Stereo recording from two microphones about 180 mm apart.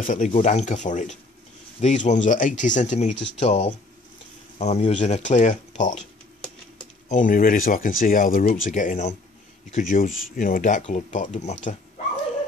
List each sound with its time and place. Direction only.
0.0 s speech: 45° left (ahead or behind)
7.1 s speech: 45° left (ahead or behind)